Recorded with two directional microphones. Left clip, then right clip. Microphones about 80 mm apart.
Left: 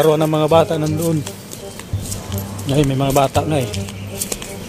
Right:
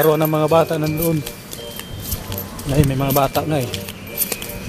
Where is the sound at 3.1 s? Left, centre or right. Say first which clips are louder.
Left 2 dB; centre.